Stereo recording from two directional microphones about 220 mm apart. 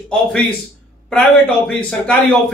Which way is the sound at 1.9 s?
5° left (ahead or behind).